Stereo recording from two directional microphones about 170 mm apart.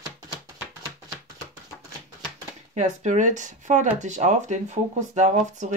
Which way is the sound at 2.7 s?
45° right (ahead or behind).